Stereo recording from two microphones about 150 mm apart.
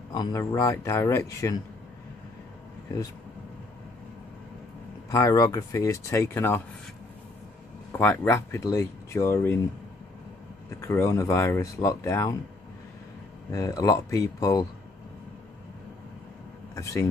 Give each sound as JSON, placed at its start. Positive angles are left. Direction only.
{"t": 0.1, "sound": "speech", "side_deg": 25}
{"t": 5.1, "sound": "speech", "side_deg": 20}
{"t": 7.9, "sound": "speech", "side_deg": 15}
{"t": 10.8, "sound": "speech", "side_deg": 20}
{"t": 13.5, "sound": "speech", "side_deg": 20}
{"t": 16.7, "sound": "speech", "side_deg": 20}